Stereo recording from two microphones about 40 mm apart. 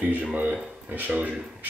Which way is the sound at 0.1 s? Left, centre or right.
Right.